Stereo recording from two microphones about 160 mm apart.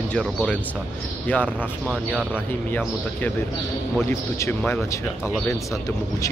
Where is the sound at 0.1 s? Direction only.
5° left (ahead or behind).